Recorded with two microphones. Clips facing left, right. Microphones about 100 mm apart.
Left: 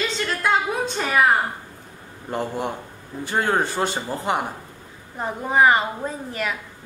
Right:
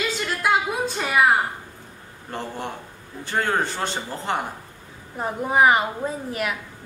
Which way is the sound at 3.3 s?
15° left (ahead or behind).